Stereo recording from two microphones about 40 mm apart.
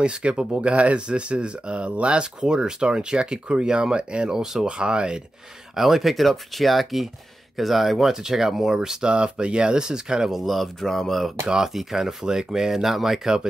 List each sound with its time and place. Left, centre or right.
0.0 s speech: right
5.8 s speech: centre
10.3 s speech: centre
11.4 s speech: centre